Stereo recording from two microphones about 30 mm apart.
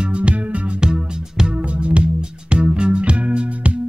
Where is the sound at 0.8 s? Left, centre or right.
Right.